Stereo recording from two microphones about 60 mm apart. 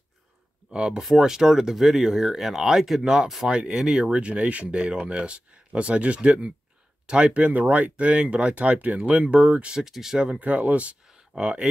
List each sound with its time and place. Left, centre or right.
0.7 s speech: centre
9.8 s speech: centre; by 11.0 s right
11.1 s a sound: centre